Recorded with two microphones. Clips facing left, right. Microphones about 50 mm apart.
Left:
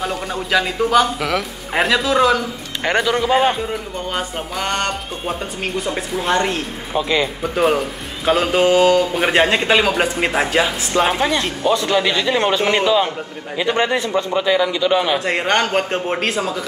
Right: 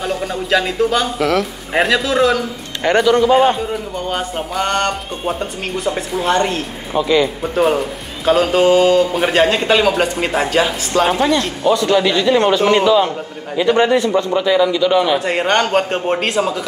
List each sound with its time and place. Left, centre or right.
0.0 s speech: centre
2.9 s a man's voice: centre
4.1 s a man's voice: centre
9.2 s speech: centre
11.7 s a man's voice: left
13.6 s a man's voice: left
15.1 s a man's voice: centre